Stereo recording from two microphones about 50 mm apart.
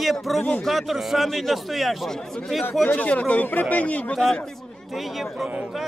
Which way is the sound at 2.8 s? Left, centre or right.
Left.